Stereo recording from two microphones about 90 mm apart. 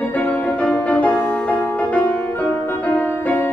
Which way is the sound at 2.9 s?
20° left (ahead or behind).